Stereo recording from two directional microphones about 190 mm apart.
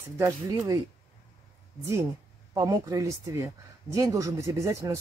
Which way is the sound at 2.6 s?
20° right (ahead or behind).